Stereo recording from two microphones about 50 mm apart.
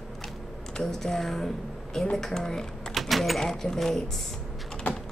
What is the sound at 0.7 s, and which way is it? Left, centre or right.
Speech, centre.